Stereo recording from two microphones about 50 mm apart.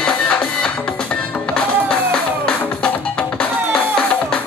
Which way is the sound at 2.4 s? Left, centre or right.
Left.